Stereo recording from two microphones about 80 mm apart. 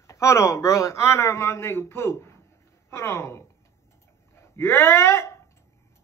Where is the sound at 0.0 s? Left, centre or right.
Left.